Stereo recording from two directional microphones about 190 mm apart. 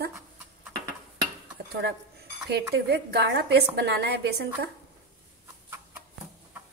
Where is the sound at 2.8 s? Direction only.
60° right (ahead or behind).